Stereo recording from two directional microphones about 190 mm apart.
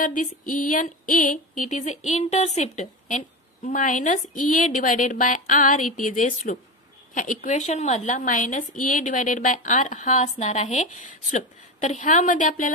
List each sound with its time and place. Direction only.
0.0 s a woman's voice: 45° left (ahead or behind)